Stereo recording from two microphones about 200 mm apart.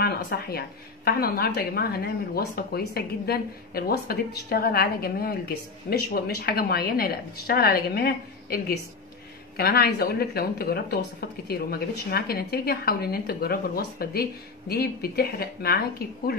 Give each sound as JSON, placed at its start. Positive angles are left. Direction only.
{"t": 0.0, "sound": "a woman's voice", "side_deg": 50}